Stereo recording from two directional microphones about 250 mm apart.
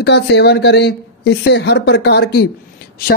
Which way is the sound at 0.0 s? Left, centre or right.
Left.